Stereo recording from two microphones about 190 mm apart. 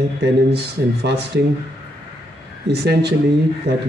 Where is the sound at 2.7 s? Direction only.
60° right (ahead or behind).